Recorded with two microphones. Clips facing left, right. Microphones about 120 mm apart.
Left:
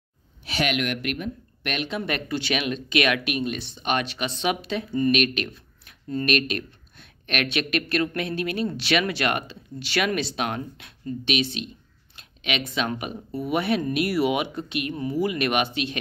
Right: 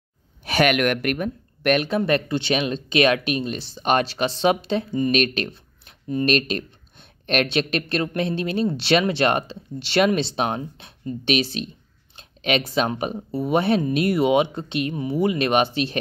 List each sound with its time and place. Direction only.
0.5 s speech: 55° right (ahead or behind); by 16.0 s 35° right (ahead or behind)